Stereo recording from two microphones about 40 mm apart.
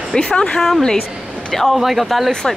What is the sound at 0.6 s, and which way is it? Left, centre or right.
A woman's voice, centre.